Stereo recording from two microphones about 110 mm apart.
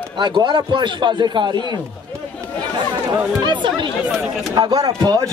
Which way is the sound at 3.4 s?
45° right (ahead or behind).